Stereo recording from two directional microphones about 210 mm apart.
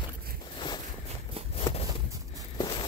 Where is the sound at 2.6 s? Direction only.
20° left (ahead or behind).